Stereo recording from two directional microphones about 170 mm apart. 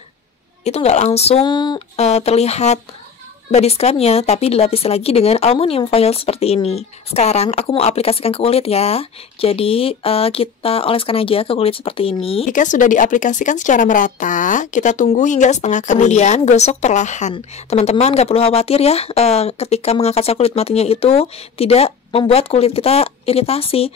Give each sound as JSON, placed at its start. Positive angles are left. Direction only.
{"t": 0.7, "sound": "speech", "side_deg": 40}
{"t": 2.0, "sound": "speech", "side_deg": 40}
{"t": 12.4, "sound": "speech", "side_deg": 50}